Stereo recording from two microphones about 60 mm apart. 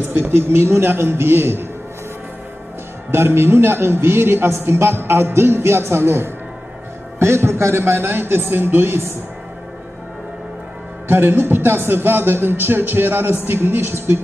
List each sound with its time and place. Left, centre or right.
0.1 s speech: right
3.1 s a man's voice: right
11.1 s speech: right